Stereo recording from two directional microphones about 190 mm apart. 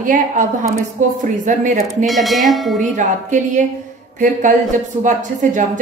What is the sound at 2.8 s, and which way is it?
A woman's voice, 40° right (ahead or behind).